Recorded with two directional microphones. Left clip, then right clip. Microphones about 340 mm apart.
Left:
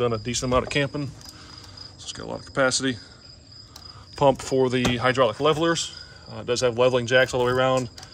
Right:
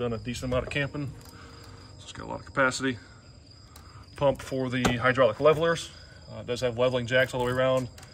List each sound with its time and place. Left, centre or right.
0.0 s speech: centre
4.1 s speech: centre
6.3 s speech: left